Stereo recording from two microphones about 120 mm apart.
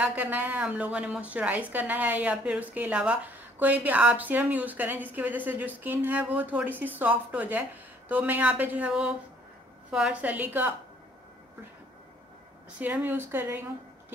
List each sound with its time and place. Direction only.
0.0 s a woman's voice: 15° right (ahead or behind)
12.8 s a woman's voice: 15° right (ahead or behind)